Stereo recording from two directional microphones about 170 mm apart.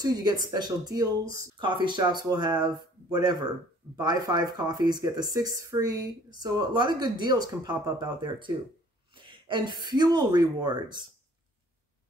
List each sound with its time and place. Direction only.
0.0 s speech: 25° right (ahead or behind)